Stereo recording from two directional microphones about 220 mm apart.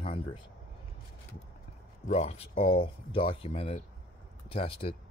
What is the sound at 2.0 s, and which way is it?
Speech, 30° left (ahead or behind).